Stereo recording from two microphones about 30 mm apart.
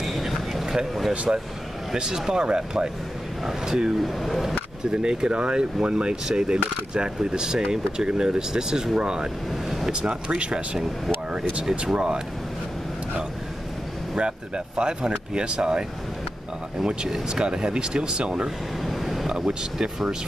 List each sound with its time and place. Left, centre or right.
0.0 s vehicle: centre
1.1 s speech: right
2.0 s speech: right
4.0 s speech: centre
4.9 s speech: right
5.3 s speech: right
9.5 s vehicle: centre
9.8 s speech: right
14.1 s speech: right
17.3 s speech: right
18.8 s vehicle: centre
19.4 s speech: centre